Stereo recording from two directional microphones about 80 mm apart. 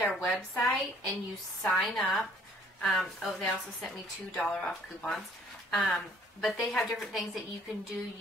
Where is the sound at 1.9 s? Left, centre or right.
Centre.